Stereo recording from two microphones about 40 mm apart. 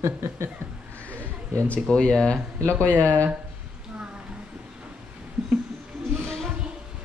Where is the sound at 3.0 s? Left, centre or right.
Left.